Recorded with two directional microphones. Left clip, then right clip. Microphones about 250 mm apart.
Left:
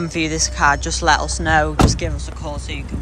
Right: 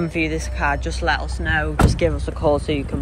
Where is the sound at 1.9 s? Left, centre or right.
Centre.